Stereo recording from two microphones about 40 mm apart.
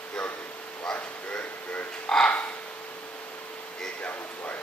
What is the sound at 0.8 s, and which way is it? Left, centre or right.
Bow-wow, left.